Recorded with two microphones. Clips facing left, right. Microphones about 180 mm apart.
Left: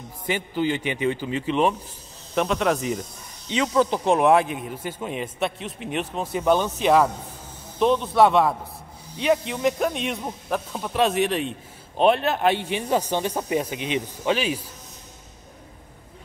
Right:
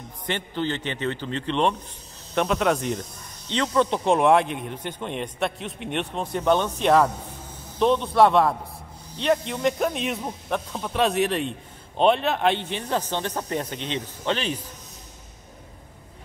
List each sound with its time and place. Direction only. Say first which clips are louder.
0.3 s speech: left 3 dB; 10° left (ahead or behind)